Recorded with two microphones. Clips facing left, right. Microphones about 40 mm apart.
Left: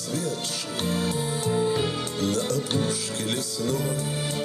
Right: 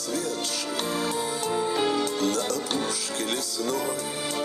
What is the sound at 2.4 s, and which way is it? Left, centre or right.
Music, right.